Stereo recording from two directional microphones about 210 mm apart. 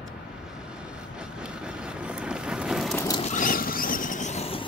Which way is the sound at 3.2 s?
40° left (ahead or behind).